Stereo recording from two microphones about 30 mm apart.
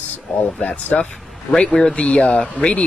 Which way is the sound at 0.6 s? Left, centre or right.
Left.